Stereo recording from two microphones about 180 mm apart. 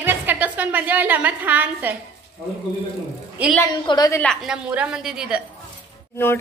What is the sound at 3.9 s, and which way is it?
Speech, 20° left (ahead or behind).